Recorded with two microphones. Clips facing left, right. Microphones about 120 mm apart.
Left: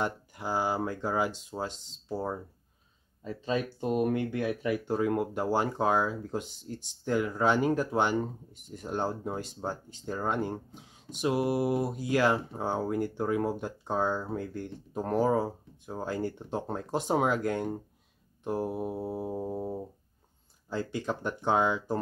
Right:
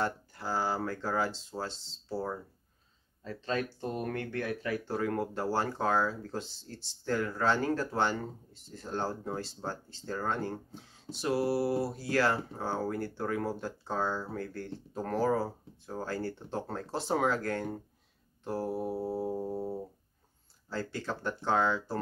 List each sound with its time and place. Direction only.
0.0 s speech: 15° left (ahead or behind)